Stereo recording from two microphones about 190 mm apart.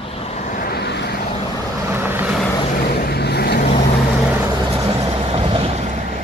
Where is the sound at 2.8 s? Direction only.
55° left (ahead or behind).